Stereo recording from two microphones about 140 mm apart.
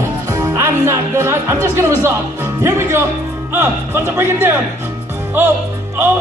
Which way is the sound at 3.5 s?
20° right (ahead or behind).